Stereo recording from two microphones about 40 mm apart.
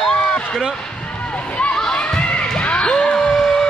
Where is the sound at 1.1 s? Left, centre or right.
Left.